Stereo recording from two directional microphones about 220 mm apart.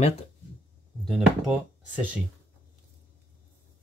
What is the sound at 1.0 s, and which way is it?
Speech, centre (ahead or behind).